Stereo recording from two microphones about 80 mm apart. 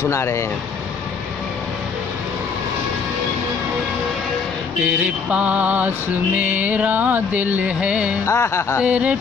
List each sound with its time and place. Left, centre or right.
0.1 s speech: left
4.8 s mantra: centre
6.3 s music: right
8.3 s speech: left
8.8 s mantra: centre